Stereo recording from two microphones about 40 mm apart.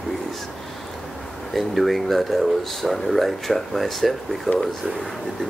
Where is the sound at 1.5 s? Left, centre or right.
Centre.